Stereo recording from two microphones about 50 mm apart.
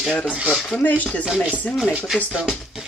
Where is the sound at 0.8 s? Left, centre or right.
Left.